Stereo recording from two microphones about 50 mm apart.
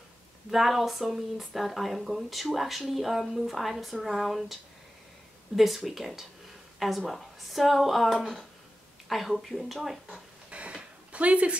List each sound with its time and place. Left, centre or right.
0.5 s speech: centre
5.6 s speech: centre
10.5 s a sound: right
11.1 s speech: right